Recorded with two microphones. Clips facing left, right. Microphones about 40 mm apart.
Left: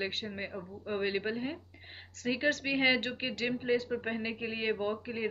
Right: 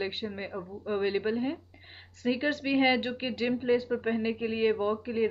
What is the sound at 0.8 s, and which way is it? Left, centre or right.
Speech, centre.